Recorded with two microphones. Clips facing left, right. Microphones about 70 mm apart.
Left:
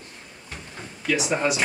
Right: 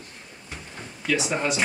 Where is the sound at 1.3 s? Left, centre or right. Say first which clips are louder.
Left 2 dB; centre.